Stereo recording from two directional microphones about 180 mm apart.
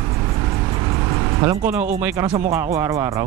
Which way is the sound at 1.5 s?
10° right (ahead or behind).